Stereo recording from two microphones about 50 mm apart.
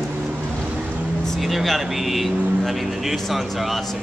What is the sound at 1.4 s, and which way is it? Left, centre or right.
Speech, centre.